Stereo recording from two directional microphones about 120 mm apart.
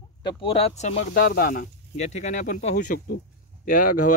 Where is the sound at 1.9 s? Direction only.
80° left.